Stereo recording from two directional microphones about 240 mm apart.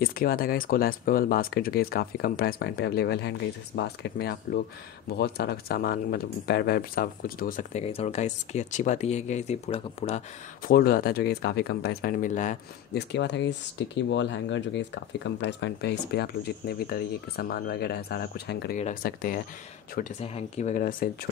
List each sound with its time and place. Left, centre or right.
0.0 s speech: left
13.1 s speech: left
20.0 s speech: left